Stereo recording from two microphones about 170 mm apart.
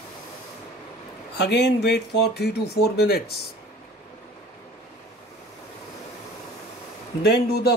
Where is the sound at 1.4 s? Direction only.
85° left; by 3.3 s 70° left (ahead or behind).